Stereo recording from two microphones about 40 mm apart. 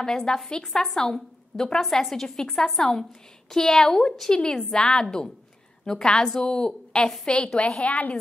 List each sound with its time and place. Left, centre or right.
0.0 s a woman's voice: centre